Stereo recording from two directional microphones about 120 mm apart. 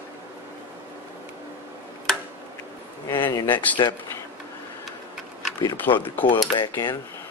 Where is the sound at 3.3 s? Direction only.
40° left (ahead or behind).